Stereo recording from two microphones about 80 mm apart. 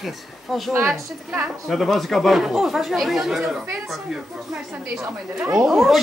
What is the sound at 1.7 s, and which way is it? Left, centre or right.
Speech, centre.